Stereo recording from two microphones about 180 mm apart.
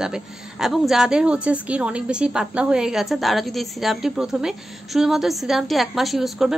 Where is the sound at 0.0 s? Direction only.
5° right (ahead or behind).